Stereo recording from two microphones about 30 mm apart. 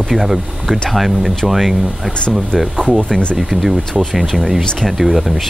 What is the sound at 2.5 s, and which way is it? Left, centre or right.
Speech, right.